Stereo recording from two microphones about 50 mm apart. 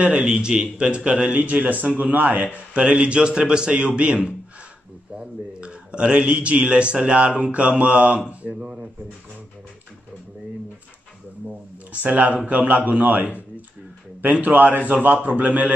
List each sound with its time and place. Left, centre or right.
0.0 s speech: right
11.4 s speech: right
14.4 s a man's voice: right